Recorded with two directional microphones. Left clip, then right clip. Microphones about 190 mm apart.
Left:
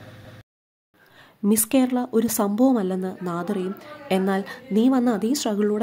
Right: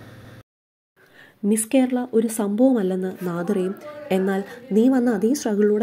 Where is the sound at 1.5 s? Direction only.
15° left (ahead or behind).